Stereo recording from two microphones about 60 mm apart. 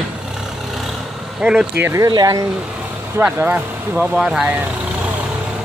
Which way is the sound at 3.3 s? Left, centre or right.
Right.